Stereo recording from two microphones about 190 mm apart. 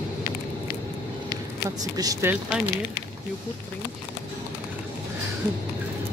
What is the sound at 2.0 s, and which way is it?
Speech, 20° right (ahead or behind).